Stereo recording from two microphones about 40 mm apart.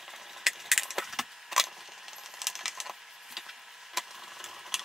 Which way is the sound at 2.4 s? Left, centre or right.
Centre.